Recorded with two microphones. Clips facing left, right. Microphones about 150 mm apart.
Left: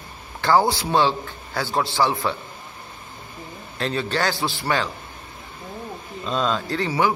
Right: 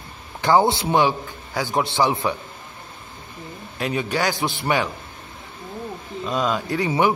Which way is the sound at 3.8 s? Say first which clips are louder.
Right 1 dB; 15° right (ahead or behind).